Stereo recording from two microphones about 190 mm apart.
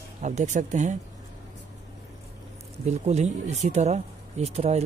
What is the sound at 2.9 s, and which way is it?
Speech, 35° right (ahead or behind).